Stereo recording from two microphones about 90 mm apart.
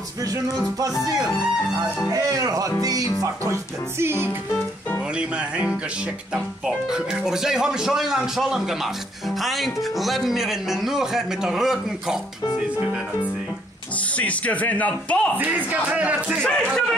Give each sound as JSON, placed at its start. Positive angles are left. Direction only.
{"t": 2.0, "sound": "music", "side_deg": -40}
{"t": 4.0, "sound": "music", "side_deg": -25}
{"t": 5.1, "sound": "speech", "side_deg": -10}
{"t": 14.1, "sound": "speech", "side_deg": 15}
{"t": 15.3, "sound": "speech", "side_deg": -20}
{"t": 16.4, "sound": "speech", "side_deg": 10}